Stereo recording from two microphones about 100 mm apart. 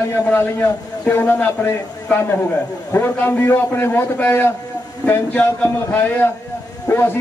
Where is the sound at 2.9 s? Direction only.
20° left (ahead or behind).